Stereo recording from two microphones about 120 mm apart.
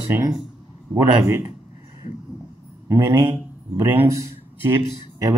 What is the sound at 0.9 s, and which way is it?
Speech, 25° right (ahead or behind).